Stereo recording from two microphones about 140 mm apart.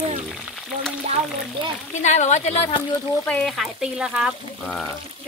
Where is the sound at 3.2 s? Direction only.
5° left (ahead or behind).